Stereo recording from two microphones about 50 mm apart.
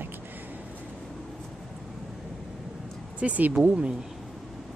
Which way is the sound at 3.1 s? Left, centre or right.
Right.